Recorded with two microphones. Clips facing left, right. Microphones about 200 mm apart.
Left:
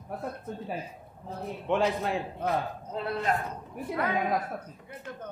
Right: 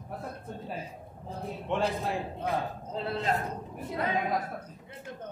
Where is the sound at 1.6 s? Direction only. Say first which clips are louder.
Left 3 dB; centre (ahead or behind).